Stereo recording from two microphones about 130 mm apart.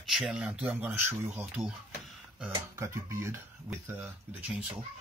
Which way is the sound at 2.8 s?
20° right (ahead or behind).